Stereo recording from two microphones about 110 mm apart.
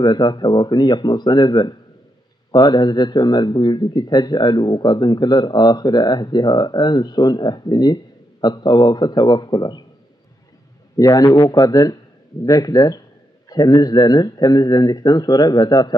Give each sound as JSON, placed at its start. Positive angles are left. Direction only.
{"t": 0.0, "sound": "speech", "side_deg": 40}
{"t": 11.0, "sound": "speech", "side_deg": 35}